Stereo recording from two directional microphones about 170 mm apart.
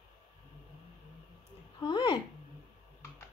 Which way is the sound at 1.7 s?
25° left (ahead or behind).